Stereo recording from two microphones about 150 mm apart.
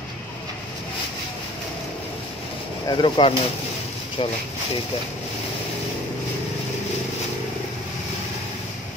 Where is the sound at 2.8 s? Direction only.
35° left (ahead or behind).